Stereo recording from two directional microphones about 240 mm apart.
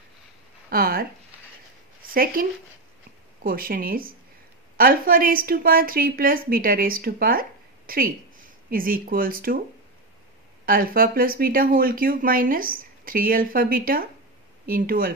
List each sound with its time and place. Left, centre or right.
0.7 s speech: right
2.0 s speech: right
3.4 s speech: right
10.6 s speech: right